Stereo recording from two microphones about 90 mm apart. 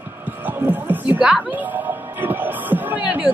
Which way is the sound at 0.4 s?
20° right (ahead or behind).